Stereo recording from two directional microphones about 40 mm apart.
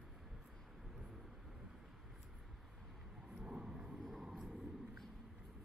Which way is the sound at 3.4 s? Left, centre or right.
Right.